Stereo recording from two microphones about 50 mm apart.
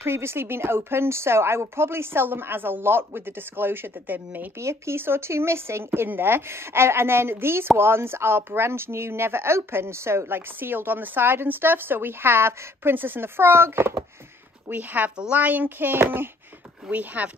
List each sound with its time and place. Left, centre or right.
0.0 s speech: right
4.6 s speech: right
6.0 s speech: right
14.7 s speech: right
16.9 s speech: right